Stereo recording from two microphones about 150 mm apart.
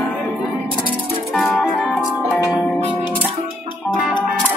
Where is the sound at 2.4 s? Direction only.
20° left (ahead or behind).